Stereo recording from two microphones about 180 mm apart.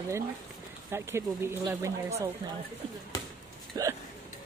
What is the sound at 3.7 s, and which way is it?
Speech, 20° right (ahead or behind).